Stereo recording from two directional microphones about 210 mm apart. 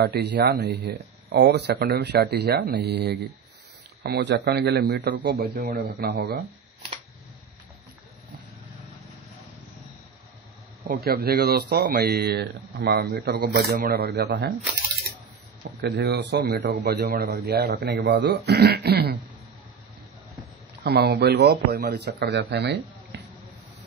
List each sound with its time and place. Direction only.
0.0 s speech: 50° right (ahead or behind)
10.8 s speech: 45° right (ahead or behind)
15.8 s speech: 55° right (ahead or behind)
20.8 s speech: 50° right (ahead or behind)